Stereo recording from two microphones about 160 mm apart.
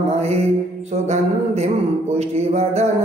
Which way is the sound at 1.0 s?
40° right (ahead or behind).